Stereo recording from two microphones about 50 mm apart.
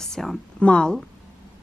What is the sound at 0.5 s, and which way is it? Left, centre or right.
Speech, centre.